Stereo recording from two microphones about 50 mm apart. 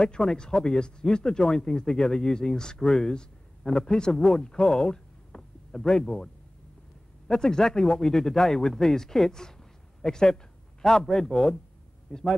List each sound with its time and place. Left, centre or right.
0.0 s a man's voice: centre